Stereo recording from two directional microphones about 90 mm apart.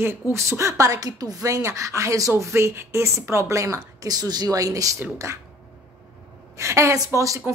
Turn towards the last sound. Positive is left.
turn(degrees=-40)  # may be behind; listen again after turning